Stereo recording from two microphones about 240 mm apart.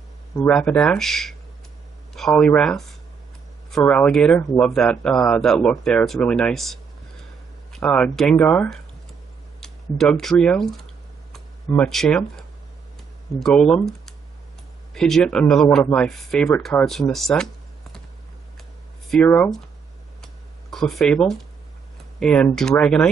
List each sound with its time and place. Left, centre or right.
0.5 s speech: centre
19.0 s speech: centre
20.7 s speech: centre